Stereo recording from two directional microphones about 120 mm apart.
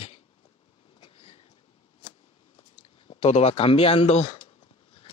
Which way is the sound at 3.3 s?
60° left (ahead or behind).